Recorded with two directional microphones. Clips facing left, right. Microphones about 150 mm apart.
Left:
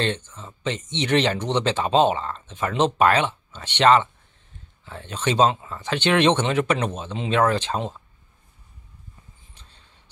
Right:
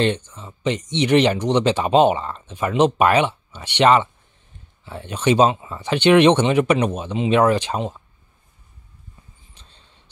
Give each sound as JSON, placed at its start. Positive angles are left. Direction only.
{"t": 0.0, "sound": "speech", "side_deg": -15}